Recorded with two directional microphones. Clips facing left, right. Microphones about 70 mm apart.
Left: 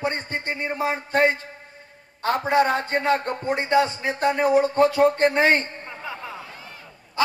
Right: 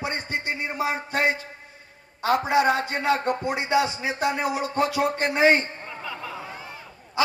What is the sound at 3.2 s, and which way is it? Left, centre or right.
A man's voice, centre.